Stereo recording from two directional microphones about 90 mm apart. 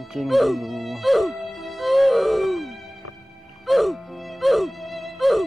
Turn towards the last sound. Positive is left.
turn(degrees=0)  # may be behind; listen again after turning